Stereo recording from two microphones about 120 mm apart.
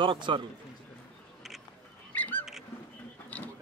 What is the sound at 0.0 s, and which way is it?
Speech, 45° right (ahead or behind).